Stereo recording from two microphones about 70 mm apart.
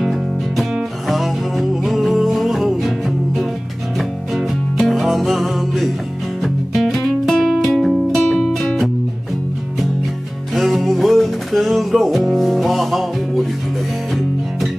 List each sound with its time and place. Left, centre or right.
0.0 s music: centre
4.3 s music: centre
8.4 s music: centre
10.5 s music: centre